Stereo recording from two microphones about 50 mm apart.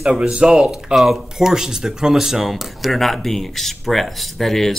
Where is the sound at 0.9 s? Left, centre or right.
Centre.